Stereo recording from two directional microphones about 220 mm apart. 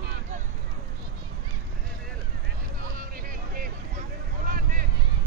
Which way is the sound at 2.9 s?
40° right (ahead or behind).